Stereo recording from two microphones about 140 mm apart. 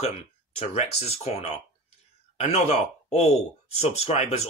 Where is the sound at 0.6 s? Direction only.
50° left (ahead or behind).